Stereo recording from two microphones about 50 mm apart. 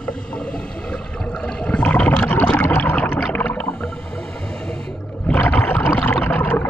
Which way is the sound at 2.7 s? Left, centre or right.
Left.